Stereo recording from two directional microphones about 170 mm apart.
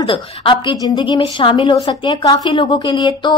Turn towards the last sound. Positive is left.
turn(degrees=25)  # may be behind; listen again after turning